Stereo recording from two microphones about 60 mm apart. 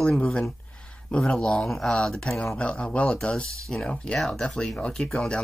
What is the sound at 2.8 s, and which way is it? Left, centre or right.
Speech, left.